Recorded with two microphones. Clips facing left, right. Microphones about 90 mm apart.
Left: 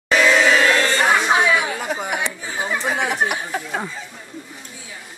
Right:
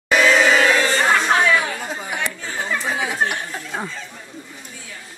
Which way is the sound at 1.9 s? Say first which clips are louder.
Left 4 dB; 65° left (ahead or behind).